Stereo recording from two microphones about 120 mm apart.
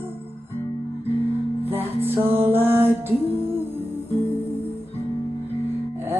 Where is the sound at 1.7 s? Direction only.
20° right (ahead or behind).